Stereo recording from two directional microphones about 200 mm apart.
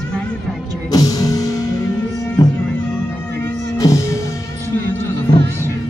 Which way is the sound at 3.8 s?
15° left (ahead or behind).